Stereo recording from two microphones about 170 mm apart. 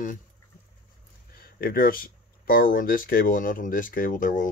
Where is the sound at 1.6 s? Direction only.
60° left (ahead or behind).